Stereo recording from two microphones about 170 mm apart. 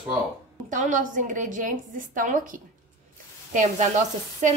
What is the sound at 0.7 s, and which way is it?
Speech, 50° right (ahead or behind).